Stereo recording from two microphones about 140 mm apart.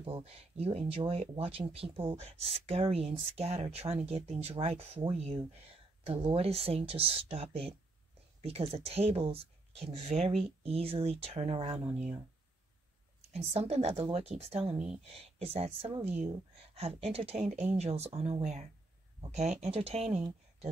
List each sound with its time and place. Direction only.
0.0 s speech: 45° right (ahead or behind)
13.3 s speech: 50° right (ahead or behind)